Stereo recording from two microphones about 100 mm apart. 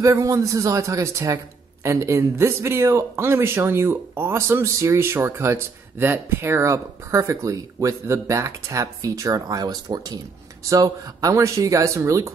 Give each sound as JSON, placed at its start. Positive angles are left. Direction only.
{"t": 0.0, "sound": "a man's voice", "side_deg": -30}